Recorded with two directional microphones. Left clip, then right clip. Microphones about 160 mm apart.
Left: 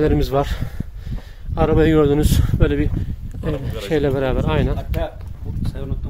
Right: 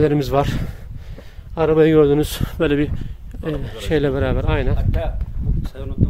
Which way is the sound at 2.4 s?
45° right (ahead or behind).